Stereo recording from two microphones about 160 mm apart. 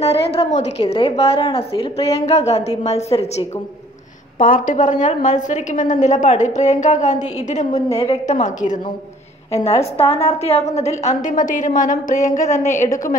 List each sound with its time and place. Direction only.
0.0 s a woman's voice: 40° left (ahead or behind)
4.4 s a woman's voice: 55° left (ahead or behind)
9.9 s a woman's voice: 35° left (ahead or behind)
11.2 s a woman's voice: 55° left (ahead or behind)